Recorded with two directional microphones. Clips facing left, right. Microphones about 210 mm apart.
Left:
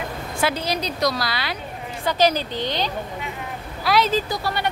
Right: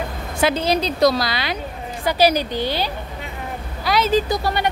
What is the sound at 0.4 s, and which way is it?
A woman's voice, 25° right (ahead or behind).